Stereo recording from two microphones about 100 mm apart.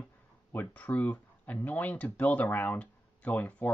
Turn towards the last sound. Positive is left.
turn(degrees=15)  # may be behind; listen again after turning